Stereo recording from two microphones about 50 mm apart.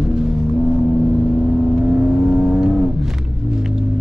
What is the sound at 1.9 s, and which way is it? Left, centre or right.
Vehicle, centre.